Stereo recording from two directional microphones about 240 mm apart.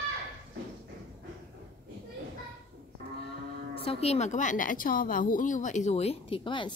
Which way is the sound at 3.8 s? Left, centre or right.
Left.